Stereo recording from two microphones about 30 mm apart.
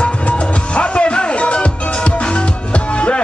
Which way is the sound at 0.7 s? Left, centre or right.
Left.